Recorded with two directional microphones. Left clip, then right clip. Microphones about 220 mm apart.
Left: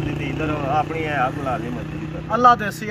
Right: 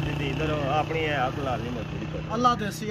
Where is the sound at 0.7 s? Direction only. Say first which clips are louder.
Left 5 dB; 5° right (ahead or behind).